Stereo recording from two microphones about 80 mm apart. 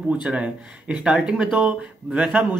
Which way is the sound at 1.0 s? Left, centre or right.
Centre.